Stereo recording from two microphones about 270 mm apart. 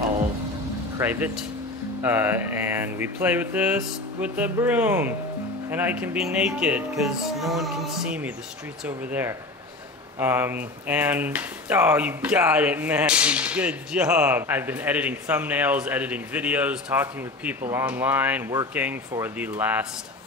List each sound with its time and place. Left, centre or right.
0.9 s mantra: centre
5.7 s speech: centre
8.8 s mantra: centre
10.1 s speech: centre